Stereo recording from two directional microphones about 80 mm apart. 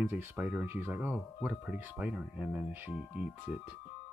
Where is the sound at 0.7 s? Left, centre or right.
Right.